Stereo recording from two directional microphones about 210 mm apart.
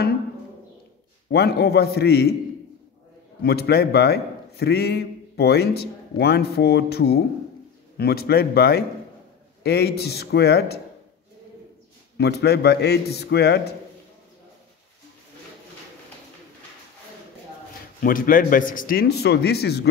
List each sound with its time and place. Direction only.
1.3 s a man's voice: 50° left (ahead or behind)
3.4 s a man's voice: 50° left (ahead or behind)
12.2 s a man's voice: 50° left (ahead or behind)
18.0 s a man's voice: 40° left (ahead or behind)